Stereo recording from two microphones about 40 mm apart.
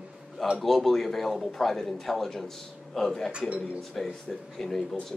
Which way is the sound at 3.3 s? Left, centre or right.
Right.